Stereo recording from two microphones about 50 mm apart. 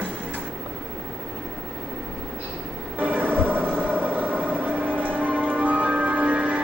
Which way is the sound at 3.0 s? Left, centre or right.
Right.